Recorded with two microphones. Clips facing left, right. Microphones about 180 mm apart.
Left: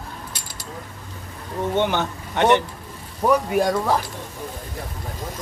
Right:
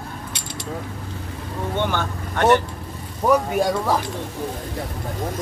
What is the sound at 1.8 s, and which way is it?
Speech, 20° left (ahead or behind).